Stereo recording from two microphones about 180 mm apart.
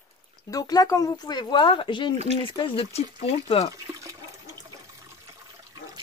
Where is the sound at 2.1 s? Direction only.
35° right (ahead or behind).